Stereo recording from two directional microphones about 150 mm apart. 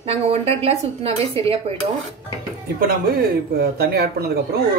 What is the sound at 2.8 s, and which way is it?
Speech, 85° right.